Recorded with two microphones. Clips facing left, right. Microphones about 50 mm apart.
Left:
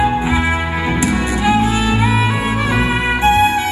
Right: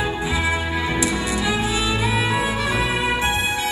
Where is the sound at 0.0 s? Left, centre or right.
Left.